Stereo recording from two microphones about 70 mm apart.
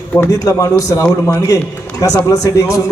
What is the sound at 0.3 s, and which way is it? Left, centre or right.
A man's voice, left.